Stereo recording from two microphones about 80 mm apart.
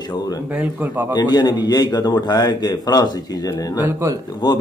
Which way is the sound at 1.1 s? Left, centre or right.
Left.